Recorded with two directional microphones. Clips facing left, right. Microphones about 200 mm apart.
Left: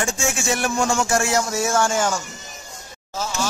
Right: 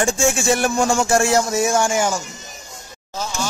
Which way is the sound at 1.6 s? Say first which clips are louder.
Right 2 dB; 15° right (ahead or behind).